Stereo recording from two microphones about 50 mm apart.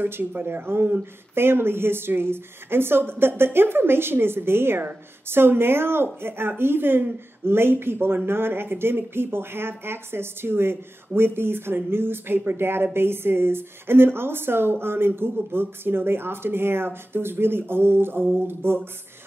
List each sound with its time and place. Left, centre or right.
0.0 s speech: right